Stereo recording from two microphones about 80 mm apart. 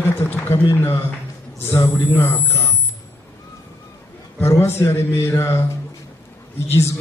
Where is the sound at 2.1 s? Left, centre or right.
Left.